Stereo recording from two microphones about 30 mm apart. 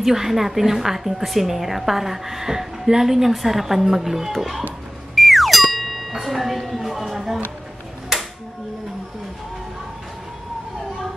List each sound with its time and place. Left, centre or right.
0.0 s a woman's voice: centre
5.1 s music: centre
6.2 s a sound: centre